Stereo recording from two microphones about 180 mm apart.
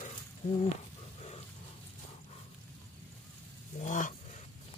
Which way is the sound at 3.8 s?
45° left (ahead or behind).